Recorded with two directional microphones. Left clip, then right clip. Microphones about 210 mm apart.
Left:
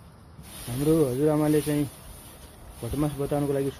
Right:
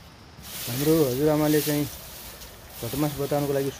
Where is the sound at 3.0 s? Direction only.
Centre (ahead or behind).